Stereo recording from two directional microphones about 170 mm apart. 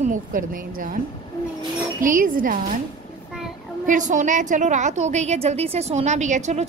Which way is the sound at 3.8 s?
45° right (ahead or behind).